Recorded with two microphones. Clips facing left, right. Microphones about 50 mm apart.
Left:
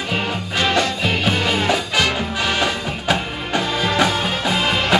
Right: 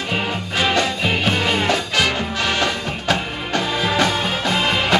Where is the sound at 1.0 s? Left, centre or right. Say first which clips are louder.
Even; centre.